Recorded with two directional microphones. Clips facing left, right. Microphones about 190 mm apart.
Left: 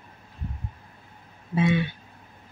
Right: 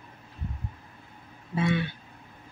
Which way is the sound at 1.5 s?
20° left (ahead or behind).